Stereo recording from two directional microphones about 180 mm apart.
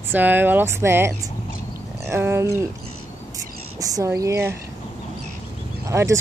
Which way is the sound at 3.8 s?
20° right (ahead or behind).